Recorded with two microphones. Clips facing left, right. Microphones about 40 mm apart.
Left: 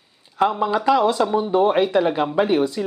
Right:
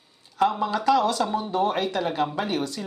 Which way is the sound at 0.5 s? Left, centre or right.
Centre.